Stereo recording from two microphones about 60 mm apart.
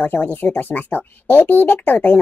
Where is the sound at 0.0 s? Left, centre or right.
Left.